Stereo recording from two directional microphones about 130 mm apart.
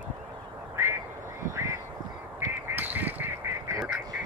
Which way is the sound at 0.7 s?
20° right (ahead or behind).